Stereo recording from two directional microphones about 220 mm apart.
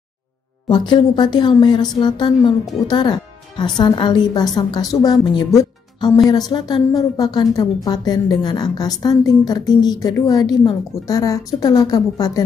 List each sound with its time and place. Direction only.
0.7 s a woman's voice: 20° left (ahead or behind)